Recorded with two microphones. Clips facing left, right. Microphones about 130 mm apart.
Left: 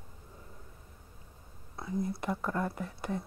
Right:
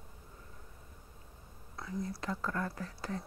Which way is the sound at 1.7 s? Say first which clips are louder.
Left 5 dB; 25° left (ahead or behind).